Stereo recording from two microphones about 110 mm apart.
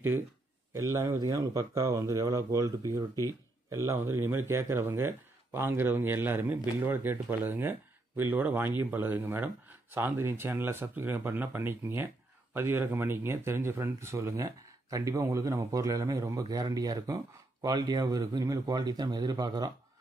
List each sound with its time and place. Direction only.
0.7 s speech: 30° right (ahead or behind)